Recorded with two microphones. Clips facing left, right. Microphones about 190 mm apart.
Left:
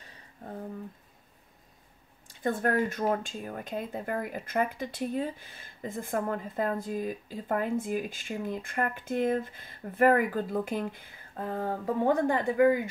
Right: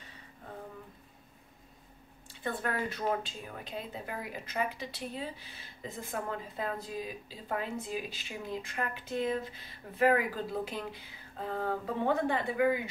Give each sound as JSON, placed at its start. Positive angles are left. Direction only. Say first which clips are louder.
{"t": 2.2, "sound": "speech", "louder": "left 7 dB", "side_deg": 45}